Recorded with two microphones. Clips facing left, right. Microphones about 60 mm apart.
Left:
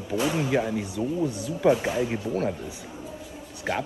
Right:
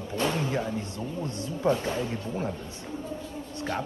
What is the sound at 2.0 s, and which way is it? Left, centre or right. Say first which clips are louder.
Speech: left 5 dB; left.